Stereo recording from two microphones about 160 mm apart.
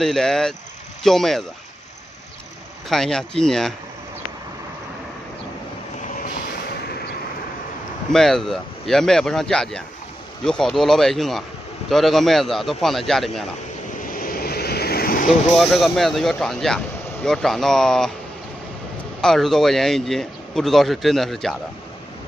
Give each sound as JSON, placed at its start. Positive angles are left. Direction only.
{"t": 0.0, "sound": "speech", "side_deg": 0}
{"t": 2.9, "sound": "speech", "side_deg": 5}
{"t": 8.1, "sound": "speech", "side_deg": 5}
{"t": 14.1, "sound": "vehicle", "side_deg": 65}
{"t": 15.5, "sound": "speech", "side_deg": 0}
{"t": 19.2, "sound": "speech", "side_deg": 0}